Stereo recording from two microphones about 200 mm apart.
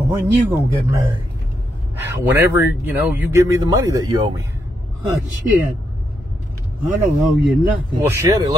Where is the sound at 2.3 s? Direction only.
15° right (ahead or behind).